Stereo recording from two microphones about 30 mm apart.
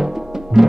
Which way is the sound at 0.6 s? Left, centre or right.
Centre.